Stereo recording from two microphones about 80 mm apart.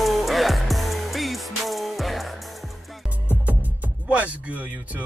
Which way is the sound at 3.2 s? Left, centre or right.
Centre.